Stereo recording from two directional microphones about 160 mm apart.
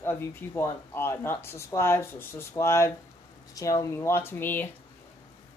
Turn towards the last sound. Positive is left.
turn(degrees=10)  # may be behind; listen again after turning